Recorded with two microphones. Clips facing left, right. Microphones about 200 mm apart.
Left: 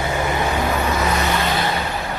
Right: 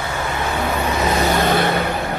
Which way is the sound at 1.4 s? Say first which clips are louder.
Right 4 dB; 55° right (ahead or behind).